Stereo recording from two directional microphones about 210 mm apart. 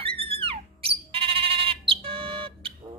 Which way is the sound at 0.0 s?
25° right (ahead or behind).